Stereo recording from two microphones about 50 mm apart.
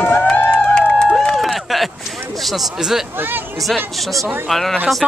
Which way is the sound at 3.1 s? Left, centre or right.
Right.